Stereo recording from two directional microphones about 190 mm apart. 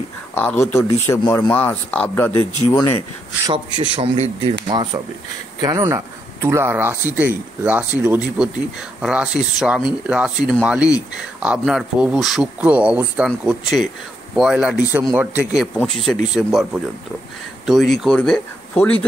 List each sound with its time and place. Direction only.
0.3 s a man's voice: 10° left (ahead or behind)
1.5 s a man's voice: 10° left (ahead or behind)
3.9 s speech: 30° right (ahead or behind); by 16.6 s centre (ahead or behind)
17.6 s speech: centre (ahead or behind)